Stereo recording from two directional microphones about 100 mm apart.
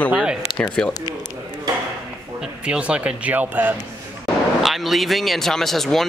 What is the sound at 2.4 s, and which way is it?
Speech, 10° right (ahead or behind).